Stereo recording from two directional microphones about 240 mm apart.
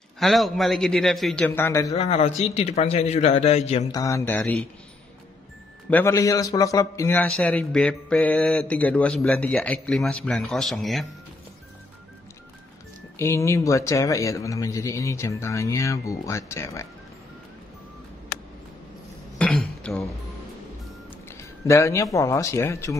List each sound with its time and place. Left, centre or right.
0.2 s a man's voice: centre
2.0 s a man's voice: left
4.0 s a man's voice: centre
5.9 s a man's voice: centre
13.2 s a man's voice: centre
19.3 s dishes: centre
21.1 s speech: centre